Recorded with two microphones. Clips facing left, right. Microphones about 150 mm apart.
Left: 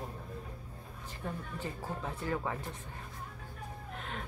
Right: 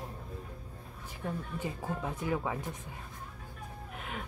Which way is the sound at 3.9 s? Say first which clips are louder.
Right 1 dB; 5° right (ahead or behind).